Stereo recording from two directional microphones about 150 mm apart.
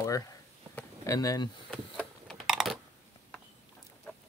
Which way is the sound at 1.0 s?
20° left (ahead or behind).